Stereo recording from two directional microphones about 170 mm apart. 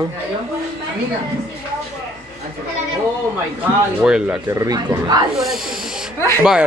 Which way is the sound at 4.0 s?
5° right (ahead or behind).